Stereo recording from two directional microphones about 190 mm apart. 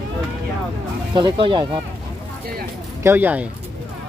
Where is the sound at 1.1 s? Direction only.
25° right (ahead or behind).